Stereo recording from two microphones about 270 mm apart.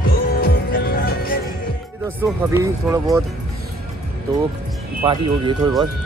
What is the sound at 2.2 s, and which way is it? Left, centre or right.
Speech, centre.